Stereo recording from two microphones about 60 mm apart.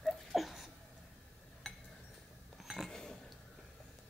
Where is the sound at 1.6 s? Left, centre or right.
Centre.